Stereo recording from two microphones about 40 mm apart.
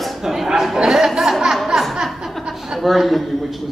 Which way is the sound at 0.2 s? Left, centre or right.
Centre.